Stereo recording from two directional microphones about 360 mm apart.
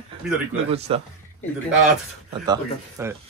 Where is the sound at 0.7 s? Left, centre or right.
Centre.